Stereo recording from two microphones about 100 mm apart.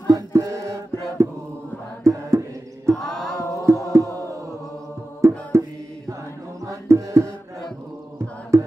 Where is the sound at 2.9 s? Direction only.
5° left (ahead or behind).